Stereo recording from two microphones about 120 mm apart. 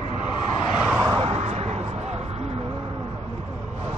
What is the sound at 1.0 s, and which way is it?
Vehicle, 55° right (ahead or behind).